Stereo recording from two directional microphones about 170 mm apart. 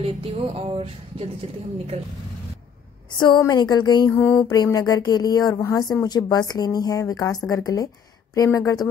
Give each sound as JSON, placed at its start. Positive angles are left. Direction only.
{"t": 0.0, "sound": "music", "side_deg": -35}
{"t": 3.2, "sound": "speech", "side_deg": 25}
{"t": 4.1, "sound": "a sound", "side_deg": 10}
{"t": 4.6, "sound": "speech", "side_deg": 20}